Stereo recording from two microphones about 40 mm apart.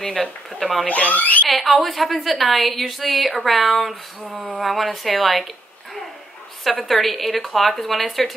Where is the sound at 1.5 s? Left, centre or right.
Centre.